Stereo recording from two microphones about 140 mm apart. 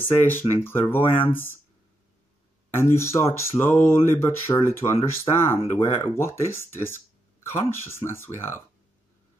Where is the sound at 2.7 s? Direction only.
20° left (ahead or behind).